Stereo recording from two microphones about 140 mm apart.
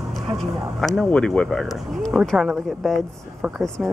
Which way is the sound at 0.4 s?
Centre (ahead or behind).